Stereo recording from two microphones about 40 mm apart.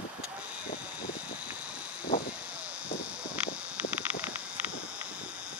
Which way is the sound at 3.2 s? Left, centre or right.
Right.